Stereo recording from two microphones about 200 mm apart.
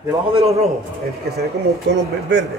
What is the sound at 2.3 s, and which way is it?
Speech, 60° right (ahead or behind).